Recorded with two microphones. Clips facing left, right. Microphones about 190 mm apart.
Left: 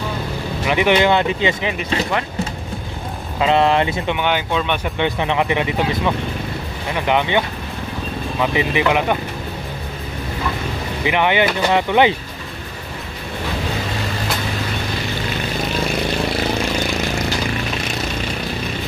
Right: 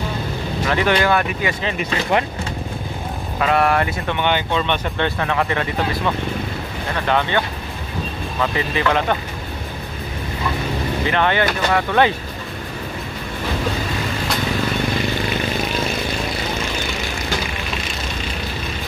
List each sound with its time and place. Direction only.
0.7 s speech: 15° left (ahead or behind)
3.3 s speech: 20° left (ahead or behind)
4.2 s speech: 5° left (ahead or behind)
11.1 s speech: 15° left (ahead or behind)